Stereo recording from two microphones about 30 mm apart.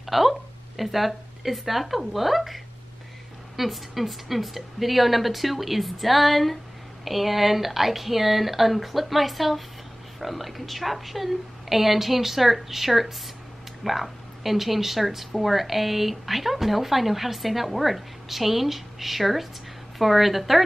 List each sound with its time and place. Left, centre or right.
0.0 s speech: centre